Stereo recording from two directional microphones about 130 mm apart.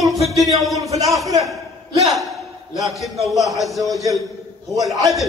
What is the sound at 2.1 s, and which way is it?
A man's voice, centre (ahead or behind).